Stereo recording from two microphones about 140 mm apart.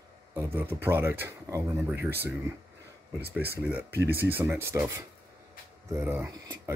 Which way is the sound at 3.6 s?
10° right (ahead or behind).